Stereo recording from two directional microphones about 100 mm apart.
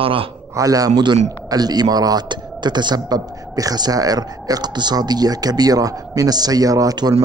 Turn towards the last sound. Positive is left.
turn(degrees=-40)  # may be behind; listen again after turning